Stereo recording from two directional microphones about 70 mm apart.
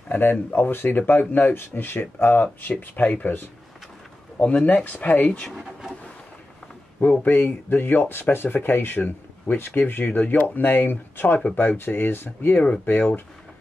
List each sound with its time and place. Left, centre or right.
0.1 s speech: left
5.5 s speech: centre
7.0 s speech: left